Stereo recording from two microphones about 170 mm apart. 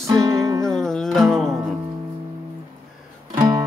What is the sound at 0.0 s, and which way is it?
Music, 20° right (ahead or behind).